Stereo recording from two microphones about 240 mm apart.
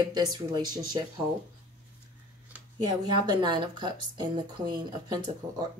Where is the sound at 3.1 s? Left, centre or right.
Centre.